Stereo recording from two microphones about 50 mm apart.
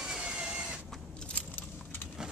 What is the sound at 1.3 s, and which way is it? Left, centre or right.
Keys jangling, left.